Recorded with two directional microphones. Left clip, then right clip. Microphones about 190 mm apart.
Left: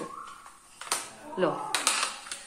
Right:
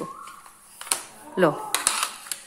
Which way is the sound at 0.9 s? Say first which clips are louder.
Right 2 dB; 40° right (ahead or behind).